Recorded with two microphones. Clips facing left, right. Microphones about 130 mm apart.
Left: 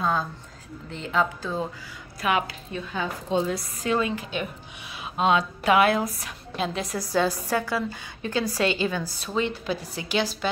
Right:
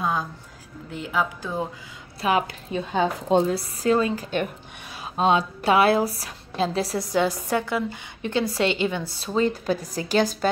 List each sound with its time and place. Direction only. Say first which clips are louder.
0.0 s a woman's voice: even; 15° right (ahead or behind)
2.2 s a woman's voice: right 2 dB; 30° right (ahead or behind)
7.1 s a woman's voice: left 1 dB; 20° right (ahead or behind); by 10.5 s 45° right (ahead or behind)